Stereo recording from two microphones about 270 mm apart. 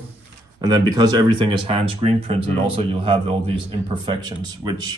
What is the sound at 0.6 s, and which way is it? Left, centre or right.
Speech, centre.